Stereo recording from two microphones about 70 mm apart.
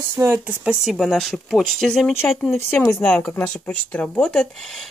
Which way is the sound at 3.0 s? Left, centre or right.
Centre.